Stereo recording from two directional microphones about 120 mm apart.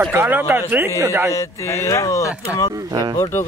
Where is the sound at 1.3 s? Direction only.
25° left (ahead or behind).